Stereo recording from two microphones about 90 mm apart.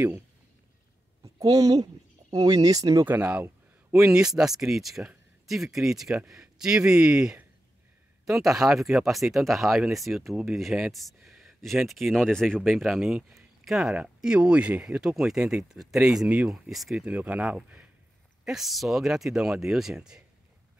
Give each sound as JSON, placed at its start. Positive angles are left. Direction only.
{"t": 1.4, "sound": "speech", "side_deg": -45}
{"t": 3.1, "sound": "speech", "side_deg": -20}
{"t": 4.0, "sound": "speech", "side_deg": -10}
{"t": 17.0, "sound": "speech", "side_deg": -15}